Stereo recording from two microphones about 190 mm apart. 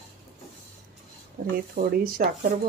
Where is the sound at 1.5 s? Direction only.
50° right (ahead or behind).